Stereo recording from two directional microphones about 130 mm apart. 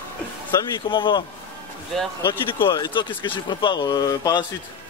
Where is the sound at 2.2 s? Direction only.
35° left (ahead or behind).